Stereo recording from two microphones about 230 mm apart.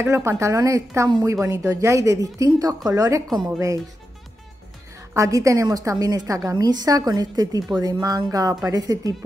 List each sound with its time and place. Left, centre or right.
0.0 s a woman's voice: centre
5.1 s a woman's voice: centre